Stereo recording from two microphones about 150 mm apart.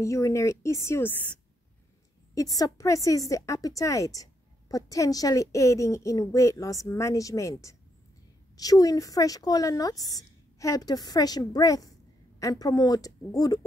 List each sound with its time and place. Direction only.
0.0 s a woman's voice: 20° left (ahead or behind)
2.3 s a woman's voice: 25° left (ahead or behind)